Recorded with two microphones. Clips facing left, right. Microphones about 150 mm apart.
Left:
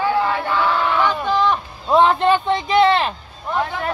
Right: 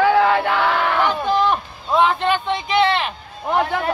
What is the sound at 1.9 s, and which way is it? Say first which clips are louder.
A man's voice: left 3 dB; 35° left (ahead or behind).